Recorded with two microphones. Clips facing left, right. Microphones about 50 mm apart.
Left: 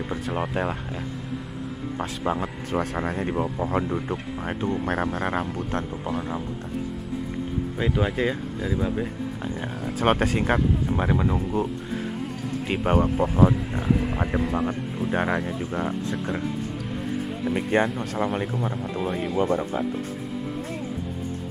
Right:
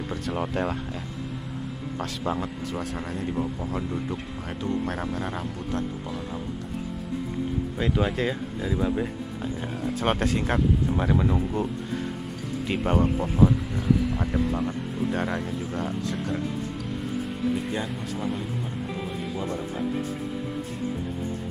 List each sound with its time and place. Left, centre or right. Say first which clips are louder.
0.1 s speech: left 1 dB; centre
2.7 s speech: left 5 dB; left
7.7 s speech: left 1 dB; centre
9.8 s speech: left 3 dB; centre
13.8 s speech: even; left
17.6 s speech: left 7 dB; left